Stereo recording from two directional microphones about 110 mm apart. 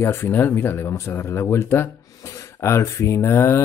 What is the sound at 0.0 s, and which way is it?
Speech, 25° left (ahead or behind).